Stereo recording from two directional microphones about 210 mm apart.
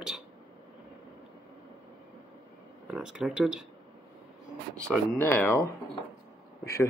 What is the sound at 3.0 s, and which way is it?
Speech, 5° right (ahead or behind).